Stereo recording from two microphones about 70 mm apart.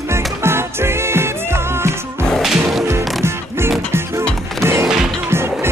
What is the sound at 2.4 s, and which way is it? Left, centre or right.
Music, centre.